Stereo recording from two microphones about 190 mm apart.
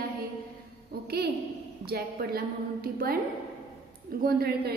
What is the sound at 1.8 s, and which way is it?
A woman's voice, 55° right (ahead or behind).